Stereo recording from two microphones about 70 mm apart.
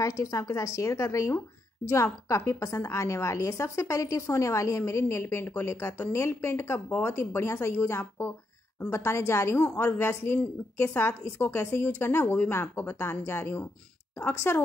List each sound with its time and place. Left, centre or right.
0.0 s a woman's voice: left
9.6 s a woman's voice: left